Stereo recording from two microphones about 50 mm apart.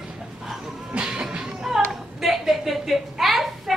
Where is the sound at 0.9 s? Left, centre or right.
Right.